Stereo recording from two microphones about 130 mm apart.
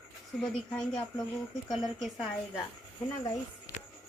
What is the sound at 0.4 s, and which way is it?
A woman's voice, 5° left (ahead or behind).